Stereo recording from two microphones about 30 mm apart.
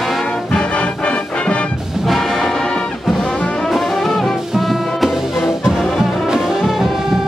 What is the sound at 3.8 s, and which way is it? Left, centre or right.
Brass instrument, centre.